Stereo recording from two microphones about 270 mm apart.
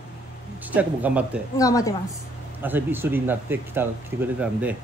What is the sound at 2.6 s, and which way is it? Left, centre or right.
A man's voice, centre.